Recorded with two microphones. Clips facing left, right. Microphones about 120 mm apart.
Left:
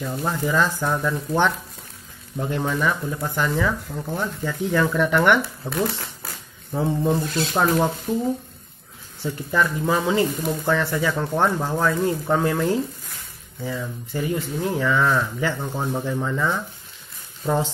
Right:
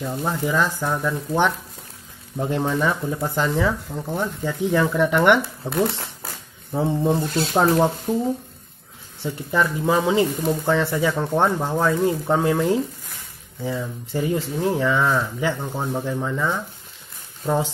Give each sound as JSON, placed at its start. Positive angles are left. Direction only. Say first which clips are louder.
{"t": 0.2, "sound": "speech", "louder": "even", "side_deg": -10}
{"t": 7.2, "sound": "speech", "louder": "right 2 dB", "side_deg": -30}
{"t": 9.2, "sound": "speech", "louder": "even", "side_deg": -20}
{"t": 15.6, "sound": "speech", "louder": "even", "side_deg": -5}